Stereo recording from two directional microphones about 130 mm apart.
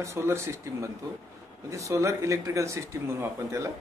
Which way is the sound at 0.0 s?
20° right (ahead or behind).